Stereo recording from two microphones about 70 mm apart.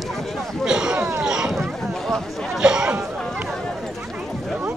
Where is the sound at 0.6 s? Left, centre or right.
Centre.